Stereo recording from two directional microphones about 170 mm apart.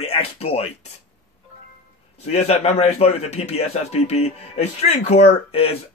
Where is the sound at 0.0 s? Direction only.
35° left (ahead or behind).